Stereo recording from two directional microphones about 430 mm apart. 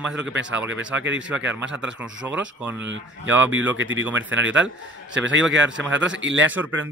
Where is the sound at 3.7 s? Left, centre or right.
Right.